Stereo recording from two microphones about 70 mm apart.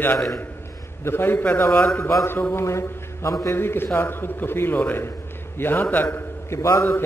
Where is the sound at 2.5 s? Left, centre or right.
Left.